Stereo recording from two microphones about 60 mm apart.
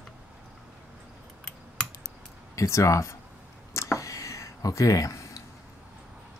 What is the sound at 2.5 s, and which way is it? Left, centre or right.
Speech, left.